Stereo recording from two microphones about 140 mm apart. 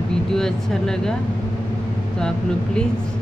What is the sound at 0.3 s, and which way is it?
Speech, 5° left (ahead or behind).